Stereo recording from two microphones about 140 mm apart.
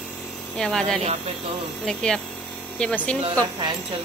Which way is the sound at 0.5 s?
5° left (ahead or behind).